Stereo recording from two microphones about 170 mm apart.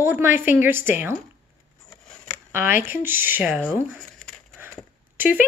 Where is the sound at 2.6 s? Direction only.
55° left (ahead or behind).